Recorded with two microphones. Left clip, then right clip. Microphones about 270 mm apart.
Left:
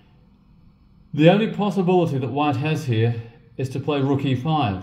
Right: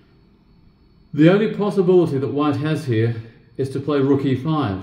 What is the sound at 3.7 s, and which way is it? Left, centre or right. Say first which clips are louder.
A man's voice: right 4 dB; right.